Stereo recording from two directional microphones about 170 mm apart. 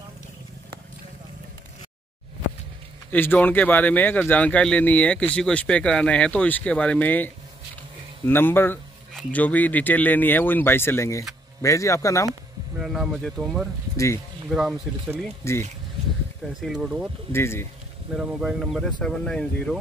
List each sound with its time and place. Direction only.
3.1 s speech: 10° left (ahead or behind)
8.3 s speech: 15° left (ahead or behind)
12.7 s speech: 5° right (ahead or behind)
13.9 s speech: 15° left (ahead or behind)
14.5 s speech: centre (ahead or behind)
15.4 s speech: 15° left (ahead or behind)
16.6 s speech: 5° right (ahead or behind)
17.3 s speech: 15° left (ahead or behind)
18.1 s speech: 5° right (ahead or behind)